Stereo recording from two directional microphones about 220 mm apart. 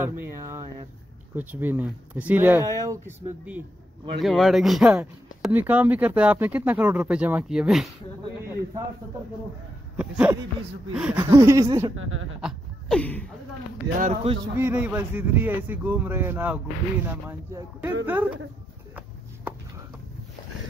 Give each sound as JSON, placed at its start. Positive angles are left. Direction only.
{"t": 0.0, "sound": "a sound", "side_deg": -10}
{"t": 1.3, "sound": "speech", "side_deg": -10}
{"t": 9.9, "sound": "speech", "side_deg": -5}
{"t": 11.9, "sound": "a woman's voice", "side_deg": -65}
{"t": 12.4, "sound": "speech", "side_deg": 0}
{"t": 13.9, "sound": "speech", "side_deg": -30}
{"t": 14.6, "sound": "speech", "side_deg": -10}